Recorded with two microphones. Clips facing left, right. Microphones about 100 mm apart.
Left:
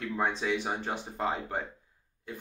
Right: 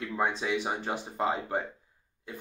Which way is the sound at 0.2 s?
10° right (ahead or behind).